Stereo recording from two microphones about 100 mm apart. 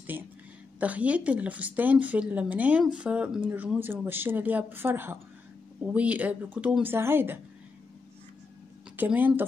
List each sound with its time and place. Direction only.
0.1 s a woman's voice: 20° right (ahead or behind)
8.9 s speech: 20° right (ahead or behind)